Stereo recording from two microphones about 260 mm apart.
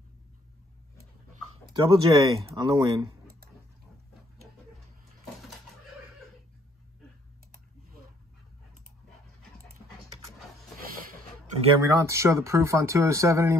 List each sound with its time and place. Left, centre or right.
1.7 s speech: centre
11.8 s speech: centre